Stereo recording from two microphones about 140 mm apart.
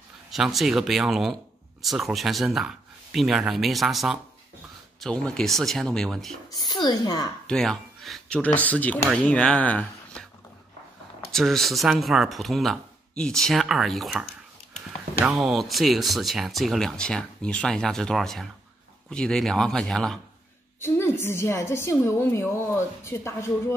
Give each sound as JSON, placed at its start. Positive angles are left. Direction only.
{"t": 0.3, "sound": "speech", "side_deg": 0}
{"t": 6.5, "sound": "speech", "side_deg": 30}
{"t": 7.4, "sound": "speech", "side_deg": 5}
{"t": 11.3, "sound": "speech", "side_deg": 0}
{"t": 15.2, "sound": "speech", "side_deg": 0}
{"t": 20.8, "sound": "a woman's voice", "side_deg": 15}